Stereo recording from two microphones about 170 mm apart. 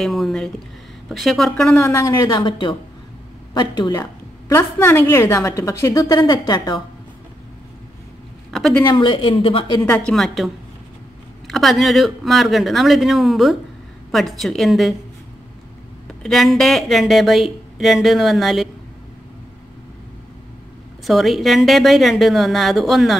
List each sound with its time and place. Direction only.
0.0 s speech: centre (ahead or behind)
1.8 s a woman's voice: 15° left (ahead or behind)
8.5 s speech: centre (ahead or behind)
8.8 s speech: 30° left (ahead or behind)
9.8 s speech: 5° left (ahead or behind)
16.2 s speech: centre (ahead or behind)
21.1 s speech: centre (ahead or behind)